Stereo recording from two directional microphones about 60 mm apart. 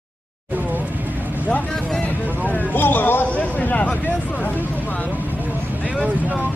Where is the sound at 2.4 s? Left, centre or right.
Left.